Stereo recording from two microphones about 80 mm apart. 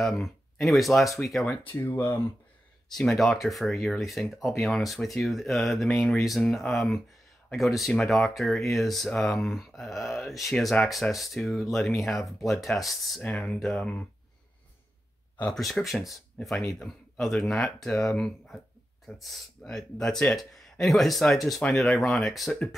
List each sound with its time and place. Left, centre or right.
0.0 s speech: centre
1.7 s speech: left
3.0 s speech: centre
15.5 s speech: centre